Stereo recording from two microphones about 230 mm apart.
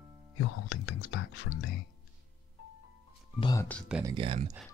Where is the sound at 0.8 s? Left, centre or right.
Left.